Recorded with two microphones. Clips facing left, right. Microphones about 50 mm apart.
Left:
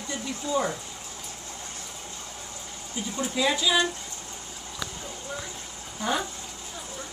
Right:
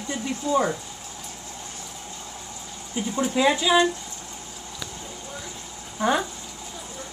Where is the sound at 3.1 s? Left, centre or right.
Right.